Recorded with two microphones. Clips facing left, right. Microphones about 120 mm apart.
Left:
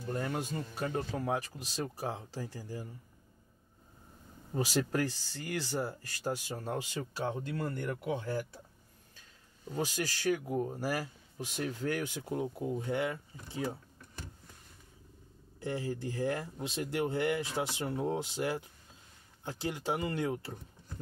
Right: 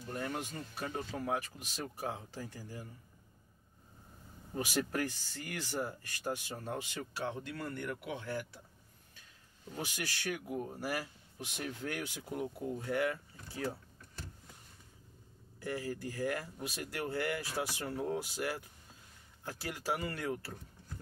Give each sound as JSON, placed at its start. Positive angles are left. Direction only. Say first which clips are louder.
{"t": 0.1, "sound": "speech", "louder": "left 4 dB", "side_deg": 35}
{"t": 4.6, "sound": "speech", "louder": "left 3 dB", "side_deg": 35}
{"t": 9.7, "sound": "speech", "louder": "left 6 dB", "side_deg": 35}
{"t": 12.3, "sound": "speech", "louder": "left 2 dB", "side_deg": 25}
{"t": 15.6, "sound": "speech", "louder": "left 3 dB", "side_deg": 25}